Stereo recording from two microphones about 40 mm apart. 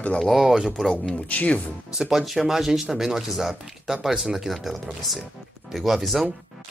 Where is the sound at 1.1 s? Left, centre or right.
Left.